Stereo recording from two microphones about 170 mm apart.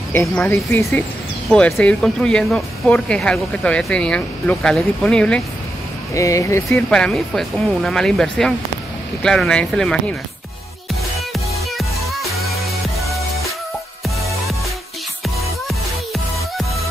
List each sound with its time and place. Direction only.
0.1 s speech: 10° left (ahead or behind)
6.1 s speech: 20° left (ahead or behind)
6.9 s speech: 5° left (ahead or behind)
11.3 s music: centre (ahead or behind)